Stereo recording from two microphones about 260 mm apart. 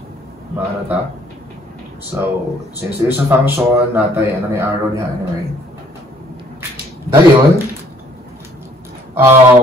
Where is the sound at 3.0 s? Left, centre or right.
Centre.